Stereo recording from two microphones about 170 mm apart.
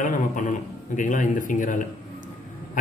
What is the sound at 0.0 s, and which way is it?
A man's voice, 50° left (ahead or behind).